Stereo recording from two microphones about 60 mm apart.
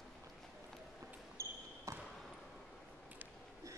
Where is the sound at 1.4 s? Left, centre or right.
Right.